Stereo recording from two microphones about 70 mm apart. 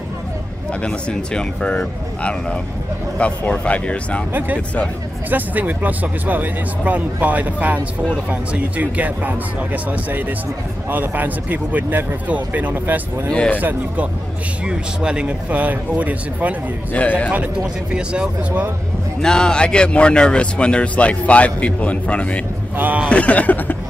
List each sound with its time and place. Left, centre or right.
0.8 s speech: centre
4.3 s speech: right
13.3 s speech: centre
13.6 s speech: right
14.7 s speech: centre
16.9 s speech: left
17.9 s speech: centre
19.2 s speech: centre
22.8 s speech: right
23.0 s speech: centre